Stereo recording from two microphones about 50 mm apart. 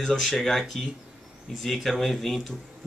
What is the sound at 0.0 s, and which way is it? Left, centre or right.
Speech, centre.